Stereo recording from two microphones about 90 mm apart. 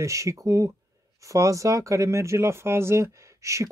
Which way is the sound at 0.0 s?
35° right (ahead or behind).